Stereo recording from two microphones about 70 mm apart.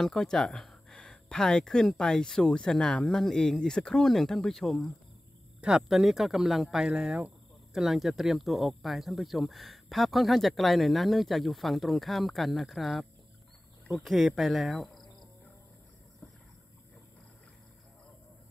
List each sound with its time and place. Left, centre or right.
0.0 s speech: centre
5.6 s speech: centre
6.9 s a sound: centre
7.8 s speech: centre